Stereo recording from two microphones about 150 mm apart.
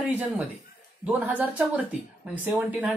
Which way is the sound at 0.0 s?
10° right (ahead or behind).